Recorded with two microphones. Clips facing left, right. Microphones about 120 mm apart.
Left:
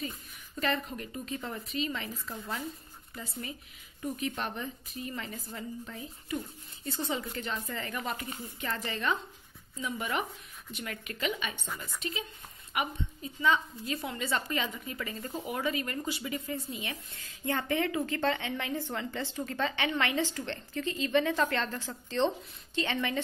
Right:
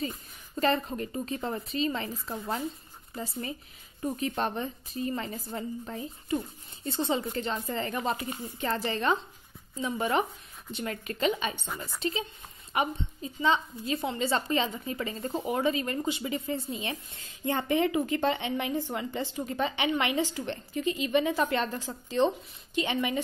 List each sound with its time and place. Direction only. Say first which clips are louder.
0.0 s a woman's voice: right 4 dB; 30° right (ahead or behind); by 23.2 s 15° right (ahead or behind)